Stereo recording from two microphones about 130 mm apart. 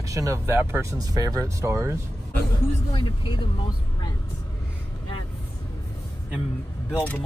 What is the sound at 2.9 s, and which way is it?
Speech, 35° left (ahead or behind).